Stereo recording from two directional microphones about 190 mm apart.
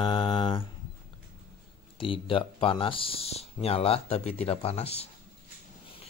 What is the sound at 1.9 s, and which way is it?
Speech, 25° left (ahead or behind).